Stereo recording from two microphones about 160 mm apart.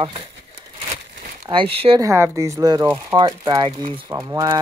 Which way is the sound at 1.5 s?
35° right (ahead or behind).